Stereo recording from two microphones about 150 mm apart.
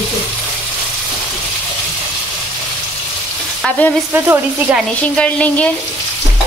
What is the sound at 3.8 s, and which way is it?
Speech, 10° left (ahead or behind).